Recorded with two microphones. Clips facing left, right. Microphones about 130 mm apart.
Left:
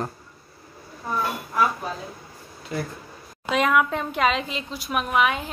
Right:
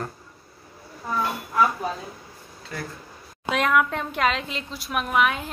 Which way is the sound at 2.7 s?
15° left (ahead or behind).